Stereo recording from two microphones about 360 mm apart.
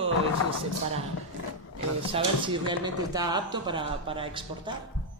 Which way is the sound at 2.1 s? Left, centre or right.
Centre.